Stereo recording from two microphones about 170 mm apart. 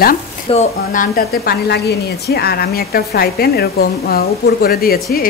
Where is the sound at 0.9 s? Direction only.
50° left (ahead or behind).